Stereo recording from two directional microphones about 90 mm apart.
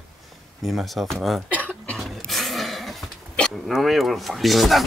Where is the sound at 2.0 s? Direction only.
Centre (ahead or behind).